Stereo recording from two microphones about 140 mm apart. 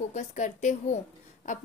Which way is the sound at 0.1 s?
60° left (ahead or behind).